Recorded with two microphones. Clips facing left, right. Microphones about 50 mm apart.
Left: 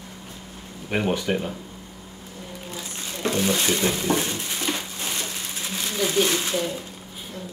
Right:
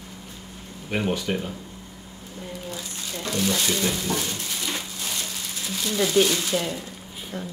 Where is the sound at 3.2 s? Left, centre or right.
Left.